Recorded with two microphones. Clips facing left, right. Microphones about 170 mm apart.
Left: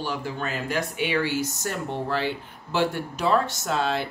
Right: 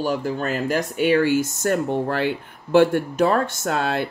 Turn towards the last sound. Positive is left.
turn(degrees=-55)  # may be behind; listen again after turning